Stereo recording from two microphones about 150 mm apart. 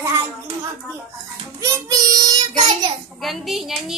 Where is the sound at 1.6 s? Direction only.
20° right (ahead or behind).